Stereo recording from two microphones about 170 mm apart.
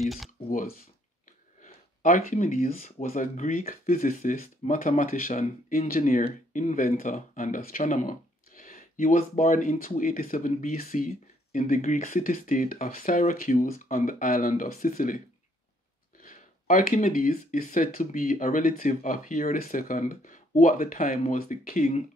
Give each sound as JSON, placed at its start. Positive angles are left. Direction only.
{"t": 0.0, "sound": "speech", "side_deg": 0}
{"t": 0.5, "sound": "speech", "side_deg": 55}